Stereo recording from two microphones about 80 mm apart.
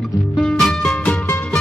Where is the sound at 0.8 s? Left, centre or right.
Centre.